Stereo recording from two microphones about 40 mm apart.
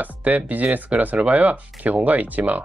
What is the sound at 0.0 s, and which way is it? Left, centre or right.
Speech, right.